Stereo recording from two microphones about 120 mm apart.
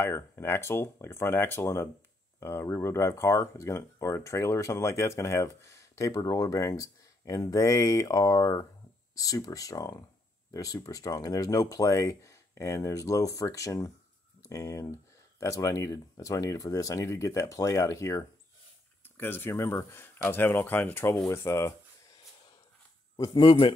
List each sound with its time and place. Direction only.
0.0 s speech: 20° left (ahead or behind)
23.1 s speech: 30° left (ahead or behind)
23.4 s a man's voice: 50° left (ahead or behind)